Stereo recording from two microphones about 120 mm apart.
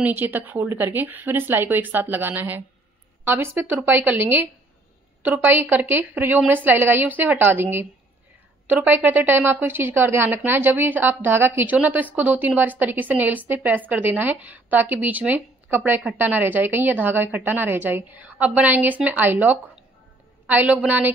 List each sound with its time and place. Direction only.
0.0 s a woman's voice: 15° right (ahead or behind)